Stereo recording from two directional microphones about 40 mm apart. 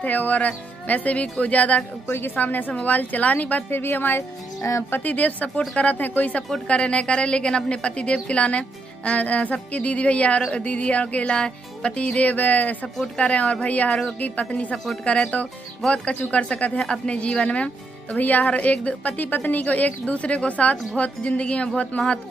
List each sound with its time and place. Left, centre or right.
0.0 s speech: left
2.0 s a woman's voice: left
2.3 s speech: left
3.7 s speech: left
5.0 s speech: left
6.7 s music: left
7.7 s speech: left
10.5 s music: left
12.2 s speech: left
13.2 s speech: left
16.8 s music: left
18.1 s speech: left
19.1 s speech: left